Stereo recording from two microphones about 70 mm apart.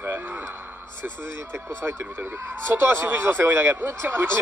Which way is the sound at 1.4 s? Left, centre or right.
Right.